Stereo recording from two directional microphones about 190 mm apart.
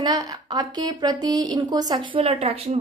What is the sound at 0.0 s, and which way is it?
A woman's voice, 20° right (ahead or behind).